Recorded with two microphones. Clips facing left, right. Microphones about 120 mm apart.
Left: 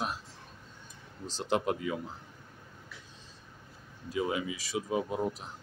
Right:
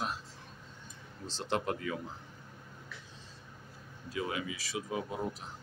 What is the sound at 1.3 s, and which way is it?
Speech, 15° left (ahead or behind).